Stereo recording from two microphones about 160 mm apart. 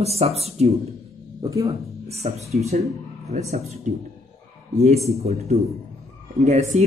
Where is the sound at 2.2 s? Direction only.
45° right (ahead or behind).